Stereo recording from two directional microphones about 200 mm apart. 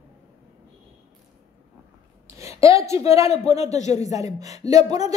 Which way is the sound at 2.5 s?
15° right (ahead or behind).